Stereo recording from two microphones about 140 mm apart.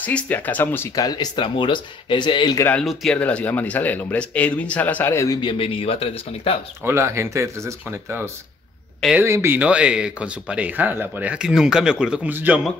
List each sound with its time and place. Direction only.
0.0 s speech: 10° left (ahead or behind)
0.9 s speech: 30° left (ahead or behind)
2.8 s speech: centre (ahead or behind); by 5.4 s 20° left (ahead or behind)
5.4 s speech: 40° left (ahead or behind)
6.8 s speech: 15° right (ahead or behind)
9.2 s speech: 20° right (ahead or behind)